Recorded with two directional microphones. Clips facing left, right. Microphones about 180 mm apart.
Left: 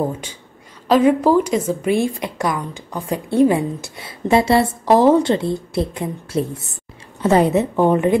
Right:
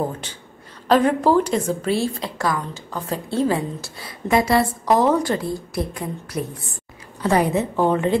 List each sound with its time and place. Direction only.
0.8 s a woman's voice: 10° left (ahead or behind)